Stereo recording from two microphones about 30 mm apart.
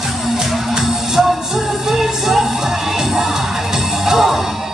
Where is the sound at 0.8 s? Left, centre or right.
Centre.